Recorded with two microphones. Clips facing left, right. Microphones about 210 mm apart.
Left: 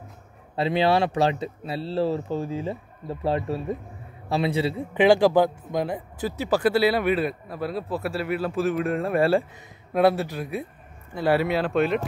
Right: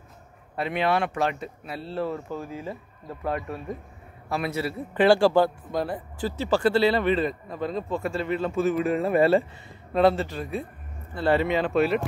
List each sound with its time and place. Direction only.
0.6 s a man's voice: 30° left (ahead or behind); by 12.1 s centre (ahead or behind)